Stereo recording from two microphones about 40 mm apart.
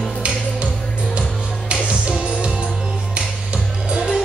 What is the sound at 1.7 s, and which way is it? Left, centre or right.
Music, right.